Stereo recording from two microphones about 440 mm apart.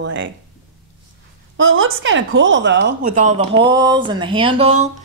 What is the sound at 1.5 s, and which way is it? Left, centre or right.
A woman's voice, right.